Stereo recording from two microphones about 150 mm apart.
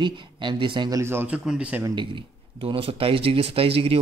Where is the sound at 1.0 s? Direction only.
15° right (ahead or behind).